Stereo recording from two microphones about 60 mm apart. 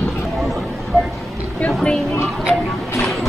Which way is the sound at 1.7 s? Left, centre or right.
Centre.